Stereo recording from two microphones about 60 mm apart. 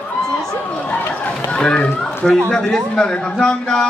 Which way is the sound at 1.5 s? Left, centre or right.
Centre.